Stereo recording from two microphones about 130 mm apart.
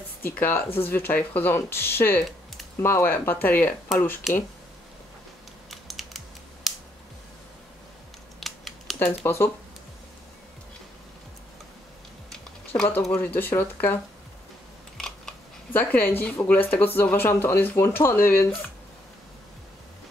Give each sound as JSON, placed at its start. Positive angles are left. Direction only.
{"t": 0.2, "sound": "speech", "side_deg": 15}
{"t": 4.3, "sound": "speech", "side_deg": 0}
{"t": 5.7, "sound": "typing", "side_deg": 0}
{"t": 8.4, "sound": "scissors", "side_deg": 0}
{"t": 9.0, "sound": "speech", "side_deg": 15}
{"t": 13.1, "sound": "speech", "side_deg": 15}
{"t": 15.0, "sound": "scissors", "side_deg": 5}
{"t": 15.7, "sound": "speech", "side_deg": 15}